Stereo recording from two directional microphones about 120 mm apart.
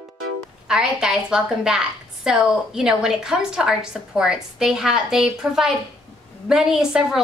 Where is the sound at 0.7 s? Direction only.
5° right (ahead or behind).